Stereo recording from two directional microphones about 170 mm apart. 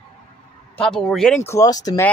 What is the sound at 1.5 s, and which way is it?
Speech, 20° left (ahead or behind).